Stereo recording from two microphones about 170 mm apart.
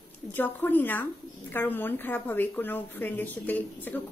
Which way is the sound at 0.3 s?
10° left (ahead or behind).